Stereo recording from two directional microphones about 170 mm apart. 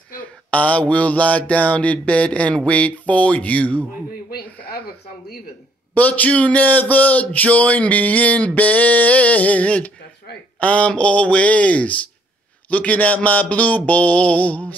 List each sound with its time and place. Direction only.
0.5 s speech: 10° left (ahead or behind)
4.3 s a sound: 65° left (ahead or behind)
5.9 s speech: 10° left (ahead or behind)